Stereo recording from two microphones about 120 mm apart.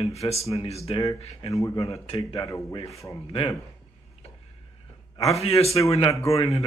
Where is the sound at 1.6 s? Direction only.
30° left (ahead or behind).